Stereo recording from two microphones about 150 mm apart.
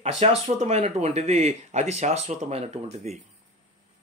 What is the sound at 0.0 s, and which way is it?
Speech, 45° right (ahead or behind).